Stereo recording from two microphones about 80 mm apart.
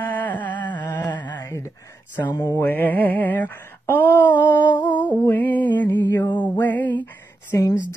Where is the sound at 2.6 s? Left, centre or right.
Left.